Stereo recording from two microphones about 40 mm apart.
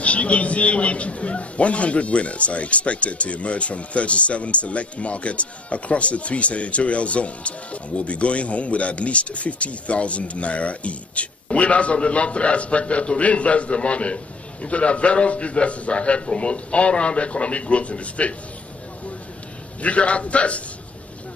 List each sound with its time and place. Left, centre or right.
0.0 s a man's voice: left
19.8 s a man's voice: left